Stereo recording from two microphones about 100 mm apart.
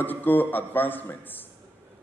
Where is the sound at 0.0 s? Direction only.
20° left (ahead or behind).